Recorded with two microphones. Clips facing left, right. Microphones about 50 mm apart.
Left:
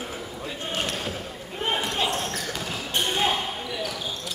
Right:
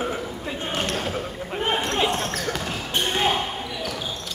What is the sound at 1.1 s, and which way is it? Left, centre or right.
Basketball bounce, centre.